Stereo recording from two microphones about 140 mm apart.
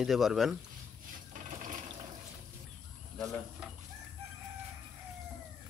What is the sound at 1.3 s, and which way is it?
Water, 65° right (ahead or behind).